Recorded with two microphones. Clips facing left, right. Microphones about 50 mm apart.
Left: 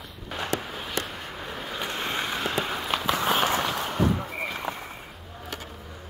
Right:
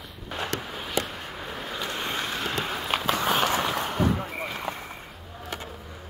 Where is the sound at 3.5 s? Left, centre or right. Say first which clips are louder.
Even; centre.